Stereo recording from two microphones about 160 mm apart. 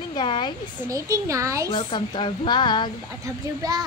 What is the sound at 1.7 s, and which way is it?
A woman's voice, 30° left (ahead or behind).